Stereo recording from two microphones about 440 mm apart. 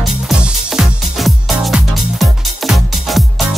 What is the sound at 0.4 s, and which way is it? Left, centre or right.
Music, centre.